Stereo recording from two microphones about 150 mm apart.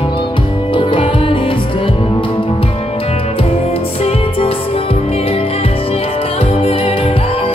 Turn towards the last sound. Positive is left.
turn(degrees=40)  # may be behind; listen again after turning